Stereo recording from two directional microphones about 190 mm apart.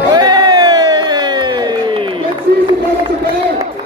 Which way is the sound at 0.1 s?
20° right (ahead or behind).